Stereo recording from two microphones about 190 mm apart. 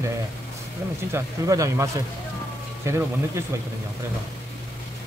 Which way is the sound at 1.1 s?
15° right (ahead or behind).